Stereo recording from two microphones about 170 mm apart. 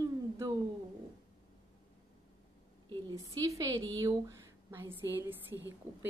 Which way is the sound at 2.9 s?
25° right (ahead or behind).